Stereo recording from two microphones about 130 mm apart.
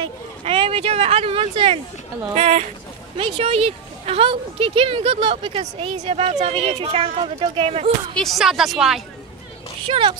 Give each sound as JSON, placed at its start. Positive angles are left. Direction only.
{"t": 0.0, "sound": "a woman's voice", "side_deg": -45}
{"t": 8.2, "sound": "a woman's voice", "side_deg": 0}
{"t": 9.8, "sound": "a woman's voice", "side_deg": -45}